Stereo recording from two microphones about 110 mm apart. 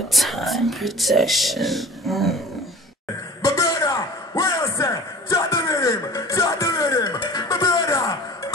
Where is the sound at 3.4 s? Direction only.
30° left (ahead or behind).